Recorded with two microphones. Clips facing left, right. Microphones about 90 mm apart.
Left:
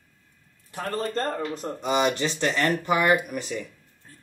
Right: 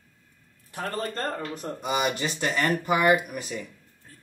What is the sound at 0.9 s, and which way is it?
Speech, 30° left (ahead or behind).